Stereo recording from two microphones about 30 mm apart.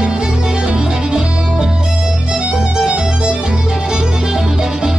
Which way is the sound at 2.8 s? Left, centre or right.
Right.